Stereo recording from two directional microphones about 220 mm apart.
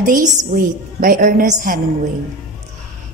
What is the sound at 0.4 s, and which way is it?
A woman's voice, 40° right (ahead or behind).